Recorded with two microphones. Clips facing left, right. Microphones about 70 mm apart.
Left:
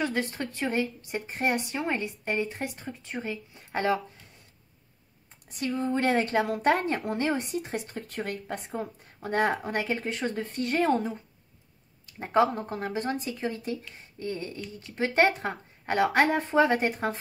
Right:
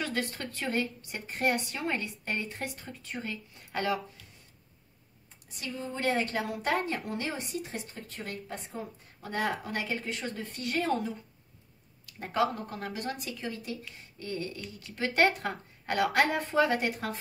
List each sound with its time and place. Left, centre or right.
0.0 s a woman's voice: left
5.6 s speech: left
9.2 s speech: left
12.1 s a woman's voice: left